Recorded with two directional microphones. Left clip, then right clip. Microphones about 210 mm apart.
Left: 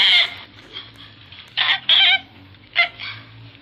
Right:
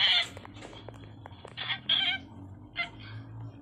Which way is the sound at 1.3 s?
45° left (ahead or behind).